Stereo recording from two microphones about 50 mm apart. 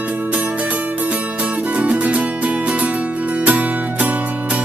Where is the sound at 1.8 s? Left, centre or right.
Right.